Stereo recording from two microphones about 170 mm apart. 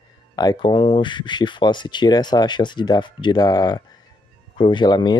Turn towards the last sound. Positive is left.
turn(degrees=25)  # may be behind; listen again after turning